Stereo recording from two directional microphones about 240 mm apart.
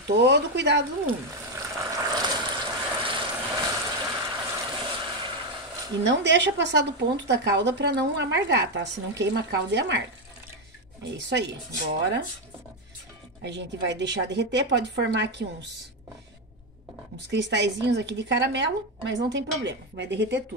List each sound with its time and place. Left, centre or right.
0.0 s speech: right
1.5 s vehicle: centre
6.0 s speech: right
11.1 s speech: right
13.4 s speech: right
17.3 s speech: right